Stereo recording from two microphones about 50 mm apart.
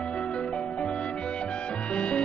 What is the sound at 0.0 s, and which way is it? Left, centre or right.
Music, left.